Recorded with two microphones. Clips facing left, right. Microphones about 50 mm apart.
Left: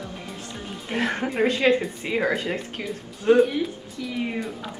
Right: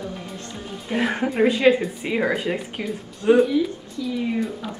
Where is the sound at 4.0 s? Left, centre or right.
Left.